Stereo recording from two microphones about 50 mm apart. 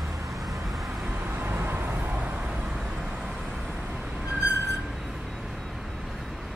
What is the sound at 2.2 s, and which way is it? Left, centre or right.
Vehicle, right.